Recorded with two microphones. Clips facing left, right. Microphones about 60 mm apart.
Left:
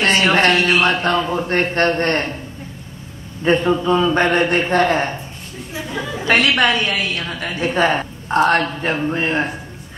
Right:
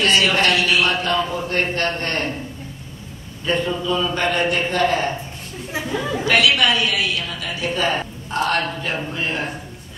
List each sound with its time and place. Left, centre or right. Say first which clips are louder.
0.0 s a man's voice: left 3 dB; left
3.4 s a woman's voice: left 6 dB; left
6.2 s a woman's voice: left 2 dB; left